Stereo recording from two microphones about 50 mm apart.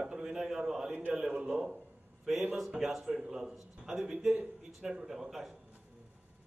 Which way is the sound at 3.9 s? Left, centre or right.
Centre.